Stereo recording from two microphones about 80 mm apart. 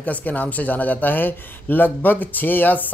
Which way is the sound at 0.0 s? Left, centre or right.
Left.